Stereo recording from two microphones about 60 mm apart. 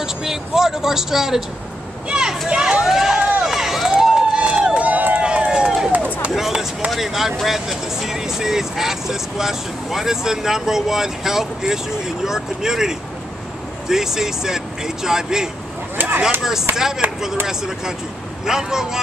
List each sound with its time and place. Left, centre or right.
0.0 s speech: centre
2.0 s children playing: centre
2.4 s speech: centre
3.2 s run: right
3.4 s run: centre; by 5.2 s right
5.2 s run: centre
6.3 s a sound: centre
6.9 s speech: centre
16.7 s speech: centre